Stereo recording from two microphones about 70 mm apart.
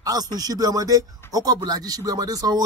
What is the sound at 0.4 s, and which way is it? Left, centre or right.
Speech, right.